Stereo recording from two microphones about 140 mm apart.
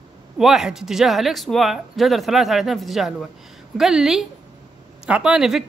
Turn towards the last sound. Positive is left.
turn(degrees=-5)  # may be behind; listen again after turning